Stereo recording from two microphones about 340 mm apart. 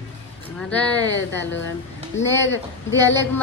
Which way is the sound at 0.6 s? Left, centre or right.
Centre.